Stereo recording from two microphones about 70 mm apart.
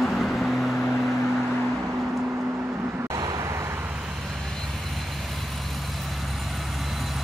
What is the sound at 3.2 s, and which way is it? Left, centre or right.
Vehicle, right.